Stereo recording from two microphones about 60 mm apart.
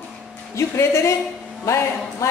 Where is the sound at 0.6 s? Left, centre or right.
Left.